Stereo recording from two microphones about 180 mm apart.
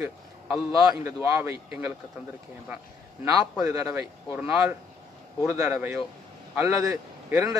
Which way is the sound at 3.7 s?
15° right (ahead or behind).